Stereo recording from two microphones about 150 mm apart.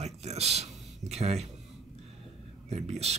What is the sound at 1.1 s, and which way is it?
Speech, 45° right (ahead or behind).